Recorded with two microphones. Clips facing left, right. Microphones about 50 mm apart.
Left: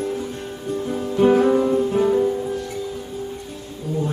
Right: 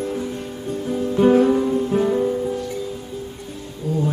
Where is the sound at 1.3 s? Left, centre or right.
Centre.